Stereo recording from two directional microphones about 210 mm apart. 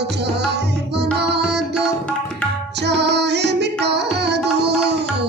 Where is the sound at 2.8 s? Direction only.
55° right (ahead or behind).